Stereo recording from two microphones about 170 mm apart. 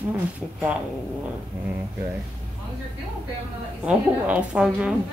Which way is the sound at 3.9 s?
5° right (ahead or behind).